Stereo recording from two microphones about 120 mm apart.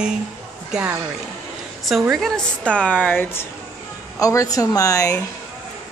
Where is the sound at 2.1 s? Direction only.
5° left (ahead or behind).